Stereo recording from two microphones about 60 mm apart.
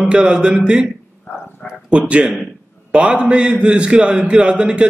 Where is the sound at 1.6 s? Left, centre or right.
Centre.